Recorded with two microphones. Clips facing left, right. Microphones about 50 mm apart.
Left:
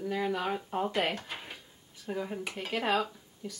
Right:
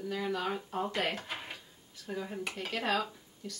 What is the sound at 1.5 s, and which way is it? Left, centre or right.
A woman's voice, centre.